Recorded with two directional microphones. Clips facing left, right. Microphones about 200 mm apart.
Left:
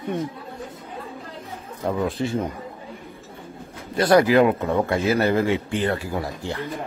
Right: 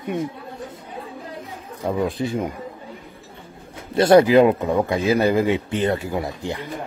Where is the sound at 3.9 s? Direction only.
25° right (ahead or behind).